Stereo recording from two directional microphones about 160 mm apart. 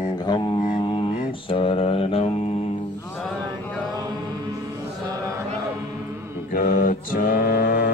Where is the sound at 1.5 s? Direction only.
35° left (ahead or behind).